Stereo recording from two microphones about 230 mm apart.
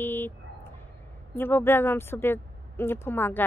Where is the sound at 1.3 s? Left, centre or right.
Centre.